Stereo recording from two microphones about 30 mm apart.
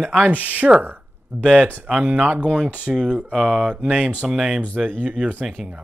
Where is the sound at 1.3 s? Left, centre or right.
Centre.